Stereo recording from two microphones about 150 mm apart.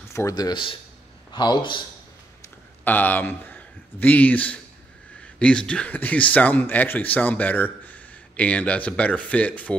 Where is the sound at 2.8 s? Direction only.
10° left (ahead or behind).